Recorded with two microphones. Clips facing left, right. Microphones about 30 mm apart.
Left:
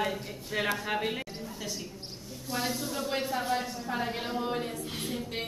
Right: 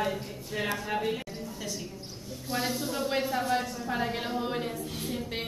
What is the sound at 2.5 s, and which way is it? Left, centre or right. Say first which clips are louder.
A woman's voice: right 2 dB; centre.